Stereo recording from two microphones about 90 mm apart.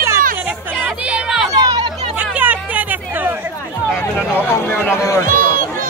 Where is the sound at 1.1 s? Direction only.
5° right (ahead or behind).